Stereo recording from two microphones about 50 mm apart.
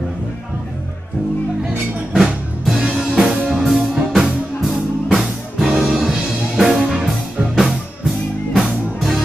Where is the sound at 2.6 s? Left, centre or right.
Centre.